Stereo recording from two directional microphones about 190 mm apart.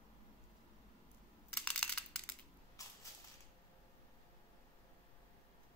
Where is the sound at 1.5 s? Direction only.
5° left (ahead or behind).